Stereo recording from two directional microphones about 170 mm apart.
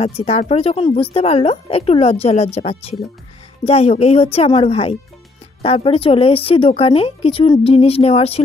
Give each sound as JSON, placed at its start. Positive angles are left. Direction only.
{"t": 0.0, "sound": "speech", "side_deg": 35}